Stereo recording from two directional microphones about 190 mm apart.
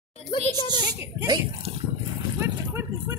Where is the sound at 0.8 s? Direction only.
25° right (ahead or behind).